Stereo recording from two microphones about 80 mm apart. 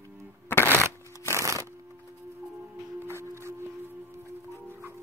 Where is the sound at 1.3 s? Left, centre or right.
Right.